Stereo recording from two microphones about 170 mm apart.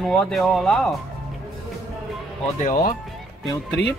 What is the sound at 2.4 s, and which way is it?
Speech, 50° left (ahead or behind).